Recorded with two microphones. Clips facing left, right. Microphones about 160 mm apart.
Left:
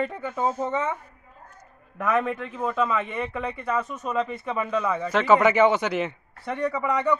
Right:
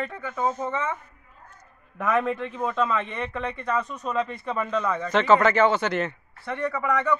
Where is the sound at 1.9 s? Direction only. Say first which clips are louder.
Even; centre (ahead or behind).